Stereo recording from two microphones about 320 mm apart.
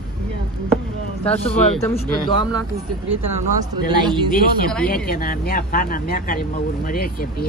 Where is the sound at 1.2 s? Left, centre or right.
Centre.